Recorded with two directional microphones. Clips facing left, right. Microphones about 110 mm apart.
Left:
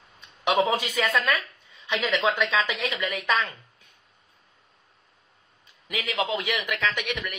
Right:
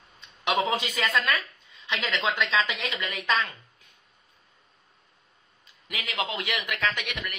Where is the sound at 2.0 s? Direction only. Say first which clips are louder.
Left 3 dB; 15° left (ahead or behind).